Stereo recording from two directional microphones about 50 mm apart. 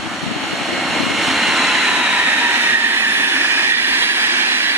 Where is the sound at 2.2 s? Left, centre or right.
Right.